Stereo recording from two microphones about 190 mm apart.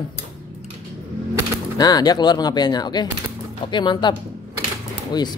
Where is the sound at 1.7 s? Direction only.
20° left (ahead or behind).